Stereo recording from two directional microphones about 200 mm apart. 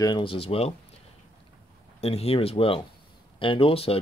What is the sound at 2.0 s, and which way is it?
Speech, 30° left (ahead or behind).